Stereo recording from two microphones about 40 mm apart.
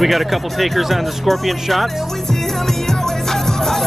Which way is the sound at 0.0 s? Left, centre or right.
Centre.